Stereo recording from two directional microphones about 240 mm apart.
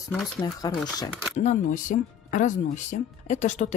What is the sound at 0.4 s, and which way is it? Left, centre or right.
Speech, centre.